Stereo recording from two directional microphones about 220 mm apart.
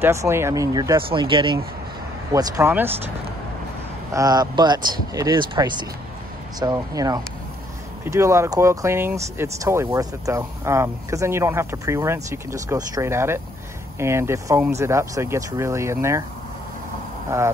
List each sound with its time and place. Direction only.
0.0 s speech: 10° right (ahead or behind)
2.3 s speech: 10° right (ahead or behind)
4.1 s speech: 15° right (ahead or behind)
17.3 s speech: 15° right (ahead or behind)